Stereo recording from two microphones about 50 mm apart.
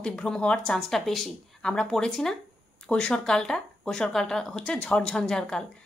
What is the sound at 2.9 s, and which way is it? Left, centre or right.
A woman's voice, left.